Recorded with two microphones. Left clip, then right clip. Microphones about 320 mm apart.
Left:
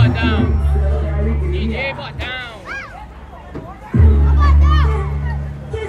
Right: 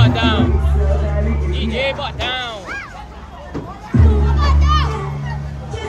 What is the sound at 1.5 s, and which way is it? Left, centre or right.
Music, centre.